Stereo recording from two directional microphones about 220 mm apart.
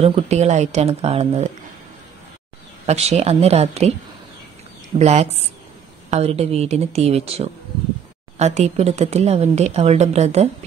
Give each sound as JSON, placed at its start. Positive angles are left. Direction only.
{"t": 0.0, "sound": "a woman's voice", "side_deg": -30}
{"t": 2.9, "sound": "a woman's voice", "side_deg": -30}
{"t": 4.9, "sound": "a woman's voice", "side_deg": -30}